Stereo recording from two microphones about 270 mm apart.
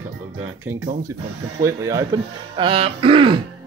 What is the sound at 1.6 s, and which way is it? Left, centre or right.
Speech, centre.